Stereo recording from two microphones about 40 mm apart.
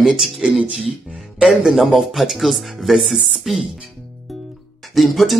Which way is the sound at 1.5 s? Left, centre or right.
Centre.